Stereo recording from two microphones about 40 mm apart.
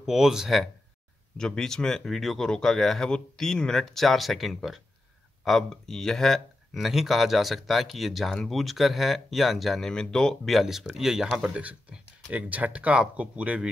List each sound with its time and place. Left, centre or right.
0.0 s speech: centre
1.4 s speech: centre
2.0 s speech: centre
2.4 s speech: centre
9.8 s speech: centre
10.4 s speech: centre
12.3 s speech: right